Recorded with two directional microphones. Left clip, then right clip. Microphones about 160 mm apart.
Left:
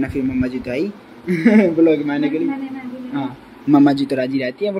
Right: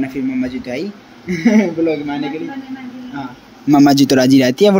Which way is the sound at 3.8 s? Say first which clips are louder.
Right 6 dB; 55° right (ahead or behind).